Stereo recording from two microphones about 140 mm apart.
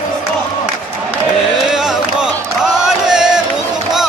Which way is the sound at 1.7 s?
5° right (ahead or behind).